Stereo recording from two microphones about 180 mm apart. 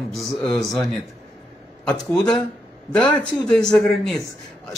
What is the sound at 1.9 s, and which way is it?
Speech, centre (ahead or behind).